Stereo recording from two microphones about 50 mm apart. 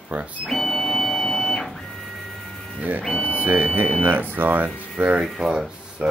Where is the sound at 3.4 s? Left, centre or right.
Right.